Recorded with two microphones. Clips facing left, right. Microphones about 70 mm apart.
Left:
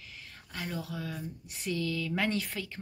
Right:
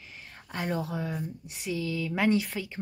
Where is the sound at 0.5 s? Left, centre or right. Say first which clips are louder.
Right 6 dB; right.